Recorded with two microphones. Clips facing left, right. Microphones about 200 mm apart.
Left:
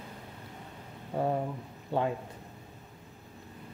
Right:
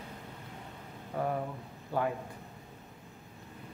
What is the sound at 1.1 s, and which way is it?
Speech, 30° left (ahead or behind).